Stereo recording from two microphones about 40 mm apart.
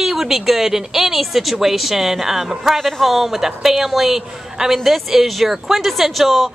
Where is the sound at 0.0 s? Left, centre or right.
Centre.